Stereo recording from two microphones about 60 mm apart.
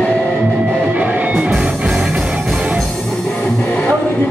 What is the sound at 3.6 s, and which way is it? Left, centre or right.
Music, left.